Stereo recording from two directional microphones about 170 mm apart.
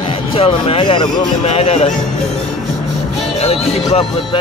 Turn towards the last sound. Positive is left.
turn(degrees=35)  # may be behind; listen again after turning